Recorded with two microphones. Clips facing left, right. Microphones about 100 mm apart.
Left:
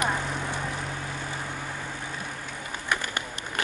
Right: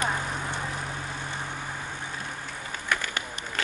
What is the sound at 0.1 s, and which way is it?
Vehicle, 10° right (ahead or behind).